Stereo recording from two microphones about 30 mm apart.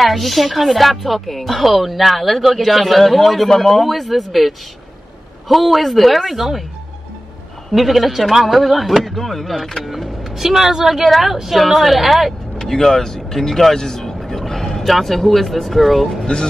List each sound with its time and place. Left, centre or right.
0.0 s speech: centre
7.7 s speech: centre
12.5 s speech: centre
13.7 s a sound: centre
14.5 s vehicle: centre
14.9 s speech: centre